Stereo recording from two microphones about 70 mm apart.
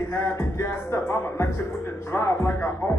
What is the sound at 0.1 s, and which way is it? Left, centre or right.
Speech, left.